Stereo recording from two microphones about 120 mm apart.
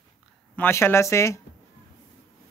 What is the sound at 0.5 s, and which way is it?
Speech, 20° left (ahead or behind).